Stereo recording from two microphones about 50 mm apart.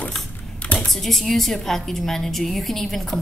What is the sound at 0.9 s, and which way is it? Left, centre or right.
A woman's voice, centre.